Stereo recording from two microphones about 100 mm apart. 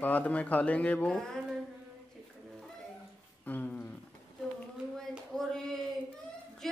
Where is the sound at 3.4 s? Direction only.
15° left (ahead or behind).